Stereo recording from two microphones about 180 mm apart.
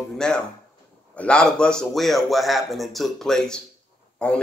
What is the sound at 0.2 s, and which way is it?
Speech, 5° left (ahead or behind).